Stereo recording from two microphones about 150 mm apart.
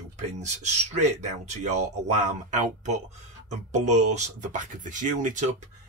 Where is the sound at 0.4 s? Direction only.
50° right (ahead or behind).